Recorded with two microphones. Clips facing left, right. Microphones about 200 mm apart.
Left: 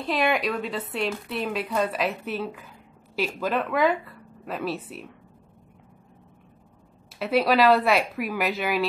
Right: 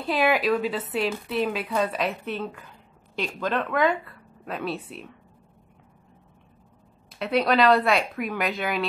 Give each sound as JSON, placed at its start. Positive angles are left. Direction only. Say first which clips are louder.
{"t": 0.0, "sound": "a woman's voice", "louder": "right 2 dB", "side_deg": 0}
{"t": 7.1, "sound": "a woman's voice", "louder": "left 1 dB", "side_deg": 5}